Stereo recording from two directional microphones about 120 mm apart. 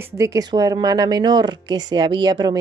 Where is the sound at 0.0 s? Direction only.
25° right (ahead or behind).